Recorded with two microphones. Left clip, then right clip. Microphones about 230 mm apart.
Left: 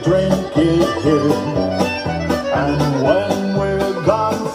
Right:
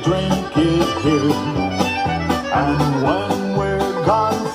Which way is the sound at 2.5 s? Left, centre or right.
Right.